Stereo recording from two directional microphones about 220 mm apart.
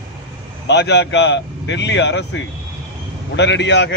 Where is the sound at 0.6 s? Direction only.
50° left (ahead or behind).